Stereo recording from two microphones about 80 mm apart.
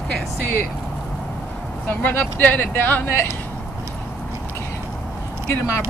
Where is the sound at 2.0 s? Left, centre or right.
Left.